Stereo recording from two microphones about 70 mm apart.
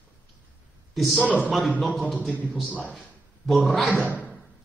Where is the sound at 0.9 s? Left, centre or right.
Centre.